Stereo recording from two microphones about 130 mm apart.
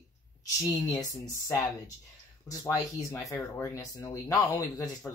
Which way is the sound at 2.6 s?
25° left (ahead or behind).